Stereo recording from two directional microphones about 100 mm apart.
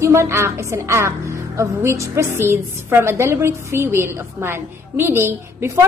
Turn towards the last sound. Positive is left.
turn(degrees=-25)  # may be behind; listen again after turning